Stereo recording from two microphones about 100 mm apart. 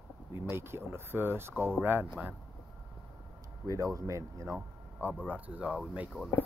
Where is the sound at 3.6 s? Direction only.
35° right (ahead or behind).